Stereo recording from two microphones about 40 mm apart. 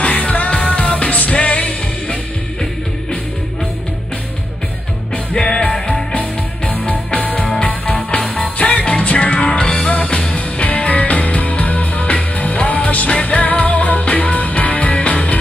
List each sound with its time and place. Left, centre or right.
0.0 s music: left
5.4 s music: left
6.1 s music: left
9.7 s music: centre; by 15.1 s left